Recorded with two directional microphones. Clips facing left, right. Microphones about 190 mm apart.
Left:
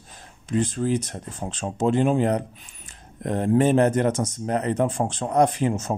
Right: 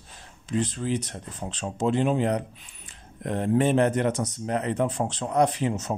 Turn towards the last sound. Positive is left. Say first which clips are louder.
# left 3 dB
turn(degrees=50)  # may be behind; listen again after turning